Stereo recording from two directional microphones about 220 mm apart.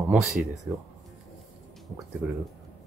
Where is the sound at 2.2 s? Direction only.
5° right (ahead or behind).